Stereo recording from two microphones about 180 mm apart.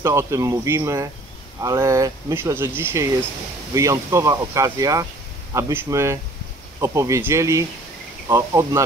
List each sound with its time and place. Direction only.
0.0 s speech: 15° right (ahead or behind)